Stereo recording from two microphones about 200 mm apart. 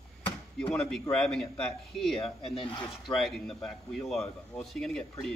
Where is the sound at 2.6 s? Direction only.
25° left (ahead or behind).